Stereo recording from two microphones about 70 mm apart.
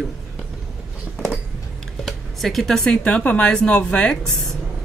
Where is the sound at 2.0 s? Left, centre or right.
Centre.